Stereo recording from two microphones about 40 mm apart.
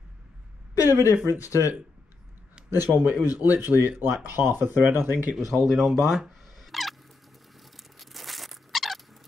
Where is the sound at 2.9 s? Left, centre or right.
Right.